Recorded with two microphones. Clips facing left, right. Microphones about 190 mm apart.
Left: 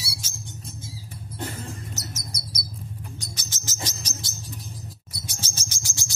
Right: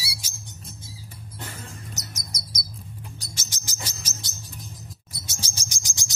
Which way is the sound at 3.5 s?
15° right (ahead or behind).